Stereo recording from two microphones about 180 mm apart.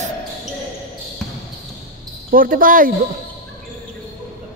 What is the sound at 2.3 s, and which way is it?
Speech, 50° right (ahead or behind).